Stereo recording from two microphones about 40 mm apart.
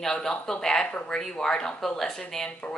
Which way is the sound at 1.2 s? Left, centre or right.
Centre.